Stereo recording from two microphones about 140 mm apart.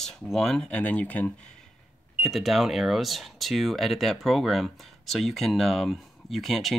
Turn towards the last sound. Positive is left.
turn(degrees=0)  # may be behind; listen again after turning